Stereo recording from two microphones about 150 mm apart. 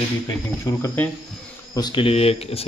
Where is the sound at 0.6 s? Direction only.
15° left (ahead or behind).